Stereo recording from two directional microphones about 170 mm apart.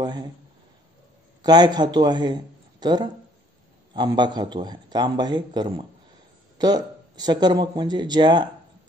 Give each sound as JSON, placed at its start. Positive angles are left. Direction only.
{"t": 0.0, "sound": "a man's voice", "side_deg": -25}
{"t": 1.4, "sound": "a man's voice", "side_deg": -25}